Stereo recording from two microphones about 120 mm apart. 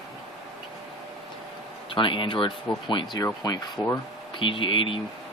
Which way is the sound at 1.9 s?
45° left (ahead or behind).